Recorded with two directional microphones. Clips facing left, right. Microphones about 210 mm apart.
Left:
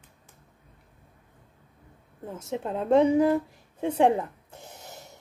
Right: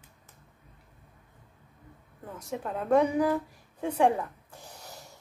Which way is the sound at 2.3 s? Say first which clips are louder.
Left 4 dB; 25° left (ahead or behind).